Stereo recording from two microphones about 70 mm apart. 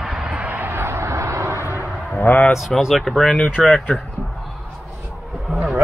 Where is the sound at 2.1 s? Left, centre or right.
Left.